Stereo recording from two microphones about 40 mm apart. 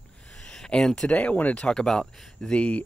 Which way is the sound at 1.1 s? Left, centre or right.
Left.